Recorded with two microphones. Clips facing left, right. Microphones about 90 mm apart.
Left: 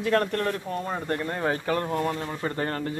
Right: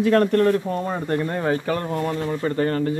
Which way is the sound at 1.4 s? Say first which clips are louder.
Right 3 dB; centre (ahead or behind).